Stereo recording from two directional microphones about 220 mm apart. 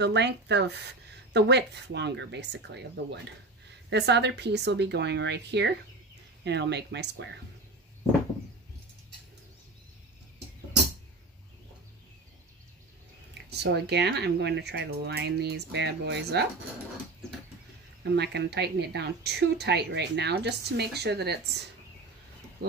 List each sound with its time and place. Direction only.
0.0 s a woman's voice: 50° right (ahead or behind)
13.5 s a woman's voice: 50° right (ahead or behind)
18.0 s a woman's voice: 50° right (ahead or behind)